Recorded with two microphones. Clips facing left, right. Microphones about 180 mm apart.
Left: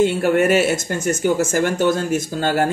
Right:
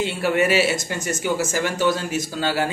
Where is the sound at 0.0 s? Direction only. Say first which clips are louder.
Left 5 dB; 50° left (ahead or behind).